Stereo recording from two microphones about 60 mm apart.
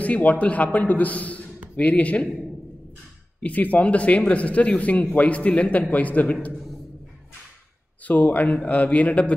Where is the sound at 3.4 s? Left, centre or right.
Left.